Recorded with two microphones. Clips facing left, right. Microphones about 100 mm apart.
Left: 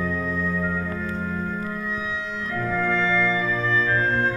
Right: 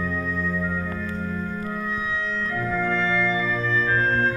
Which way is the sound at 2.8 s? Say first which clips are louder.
Left 2 dB; 20° left (ahead or behind).